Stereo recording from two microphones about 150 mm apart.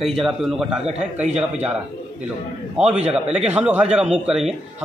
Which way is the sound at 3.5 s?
10° right (ahead or behind).